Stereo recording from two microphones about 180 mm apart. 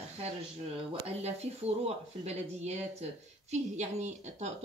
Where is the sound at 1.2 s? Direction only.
35° right (ahead or behind).